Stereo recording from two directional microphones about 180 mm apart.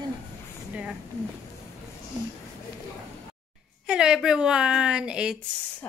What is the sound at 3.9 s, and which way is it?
A woman's voice, 5° right (ahead or behind).